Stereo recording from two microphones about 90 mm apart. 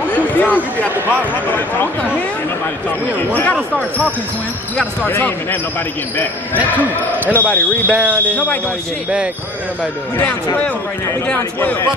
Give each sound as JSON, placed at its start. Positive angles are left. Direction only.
{"t": 0.3, "sound": "speech", "side_deg": 20}
{"t": 5.0, "sound": "speech", "side_deg": 20}
{"t": 7.3, "sound": "speech", "side_deg": 20}
{"t": 7.9, "sound": "speech", "side_deg": -15}